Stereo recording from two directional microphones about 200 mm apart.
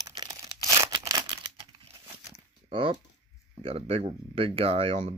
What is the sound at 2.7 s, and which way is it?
Speech, 25° right (ahead or behind).